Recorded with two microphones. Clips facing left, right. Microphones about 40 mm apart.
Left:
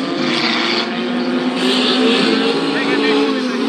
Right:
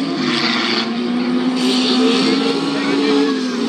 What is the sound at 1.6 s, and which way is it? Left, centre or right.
Vehicle, left.